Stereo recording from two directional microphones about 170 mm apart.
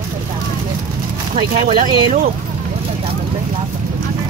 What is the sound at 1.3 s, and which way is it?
Speech, 50° right (ahead or behind).